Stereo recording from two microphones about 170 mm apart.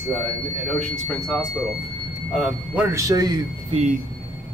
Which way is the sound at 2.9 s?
20° right (ahead or behind).